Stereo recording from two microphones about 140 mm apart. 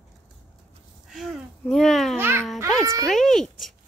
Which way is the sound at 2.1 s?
15° right (ahead or behind).